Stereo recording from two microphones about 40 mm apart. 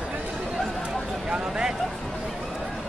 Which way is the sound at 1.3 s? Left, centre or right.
Right.